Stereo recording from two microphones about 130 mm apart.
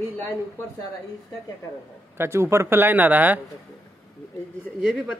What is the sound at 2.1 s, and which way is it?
Speech, 20° right (ahead or behind).